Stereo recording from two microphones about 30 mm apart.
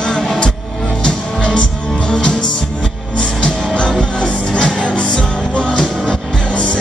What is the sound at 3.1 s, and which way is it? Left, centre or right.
Music, left.